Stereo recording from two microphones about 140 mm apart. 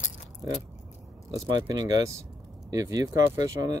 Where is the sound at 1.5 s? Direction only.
25° right (ahead or behind).